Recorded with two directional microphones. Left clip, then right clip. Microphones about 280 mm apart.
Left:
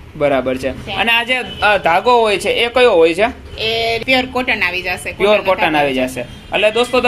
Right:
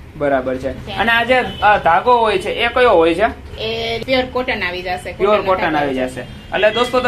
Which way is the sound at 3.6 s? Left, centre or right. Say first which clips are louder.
Left 5 dB; left.